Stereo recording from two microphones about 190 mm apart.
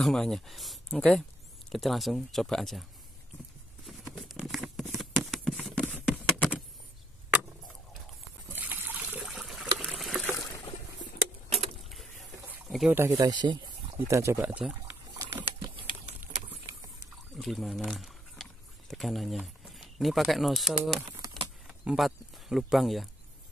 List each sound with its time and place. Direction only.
0.0 s speech: 5° left (ahead or behind)
4.1 s a sound: centre (ahead or behind)
8.5 s trickle: 10° right (ahead or behind)
11.9 s boat: centre (ahead or behind)
12.6 s a sound: centre (ahead or behind)
12.9 s speech: 15° right (ahead or behind)
15.1 s patter: 25° right (ahead or behind)
17.4 s speech: centre (ahead or behind)